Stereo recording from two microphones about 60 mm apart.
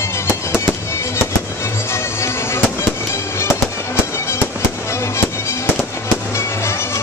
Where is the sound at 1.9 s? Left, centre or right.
Left.